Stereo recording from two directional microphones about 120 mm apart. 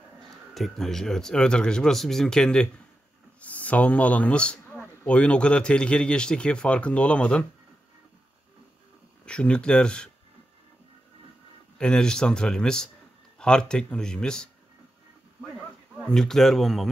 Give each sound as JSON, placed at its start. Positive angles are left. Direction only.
{"t": 0.6, "sound": "speech", "side_deg": 5}
{"t": 9.2, "sound": "speech", "side_deg": 10}
{"t": 11.8, "sound": "speech", "side_deg": 5}
{"t": 16.1, "sound": "speech", "side_deg": 5}